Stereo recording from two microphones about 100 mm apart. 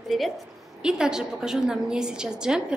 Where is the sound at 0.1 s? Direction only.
Centre (ahead or behind).